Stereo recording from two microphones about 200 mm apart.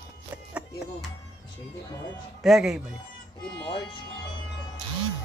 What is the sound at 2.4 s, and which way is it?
Speech, centre (ahead or behind).